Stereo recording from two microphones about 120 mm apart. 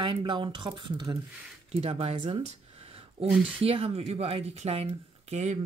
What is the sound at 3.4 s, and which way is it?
Speech, 50° right (ahead or behind).